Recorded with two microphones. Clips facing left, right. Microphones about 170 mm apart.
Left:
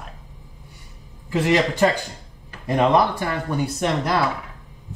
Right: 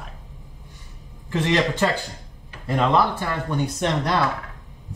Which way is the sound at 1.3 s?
10° left (ahead or behind).